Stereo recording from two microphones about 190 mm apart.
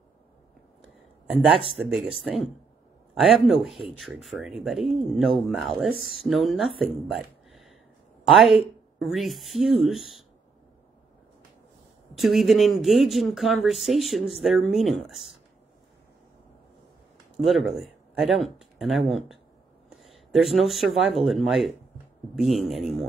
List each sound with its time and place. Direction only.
1.2 s a sound: 5° right (ahead or behind)
1.5 s speech: 30° right (ahead or behind)
1.9 s speech: centre (ahead or behind)
6.8 s a sound: centre (ahead or behind)
9.0 s speech: centre (ahead or behind)
12.2 s speech: centre (ahead or behind)
17.4 s speech: centre (ahead or behind)